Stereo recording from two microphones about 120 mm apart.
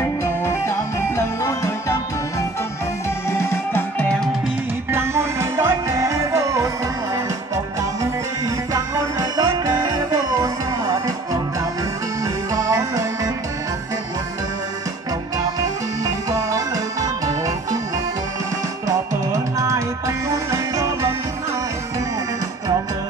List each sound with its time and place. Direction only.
0.2 s music: 20° left (ahead or behind)
3.3 s music: 20° left (ahead or behind)
4.9 s music: 20° right (ahead or behind)
8.7 s music: 30° right (ahead or behind)
12.5 s music: 30° right (ahead or behind)
16.3 s music: 25° right (ahead or behind)
18.9 s music: 25° right (ahead or behind)